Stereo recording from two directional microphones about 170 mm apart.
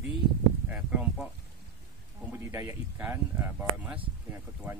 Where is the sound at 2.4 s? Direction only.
15° right (ahead or behind).